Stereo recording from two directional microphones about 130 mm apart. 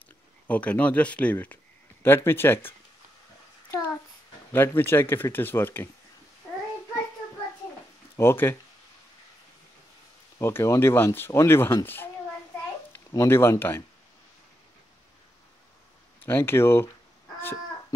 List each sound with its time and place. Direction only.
0.5 s speech: 10° left (ahead or behind)
3.7 s child singing: 15° left (ahead or behind)
4.5 s speech: 15° left (ahead or behind)
8.2 s speech: 20° left (ahead or behind)
10.4 s speech: 20° left (ahead or behind)
13.1 s speech: 20° left (ahead or behind)
16.2 s speech: 15° left (ahead or behind)